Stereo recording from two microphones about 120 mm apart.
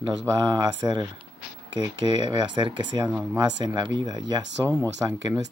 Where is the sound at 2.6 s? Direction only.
40° right (ahead or behind).